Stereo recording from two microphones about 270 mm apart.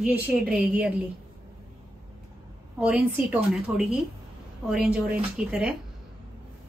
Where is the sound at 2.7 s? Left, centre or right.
Centre.